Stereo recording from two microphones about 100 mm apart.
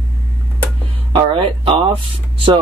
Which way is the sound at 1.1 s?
65° right (ahead or behind).